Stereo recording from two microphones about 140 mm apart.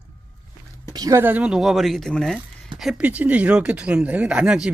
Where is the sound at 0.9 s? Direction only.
25° right (ahead or behind).